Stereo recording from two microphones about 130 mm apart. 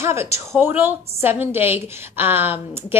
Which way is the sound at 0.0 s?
20° right (ahead or behind).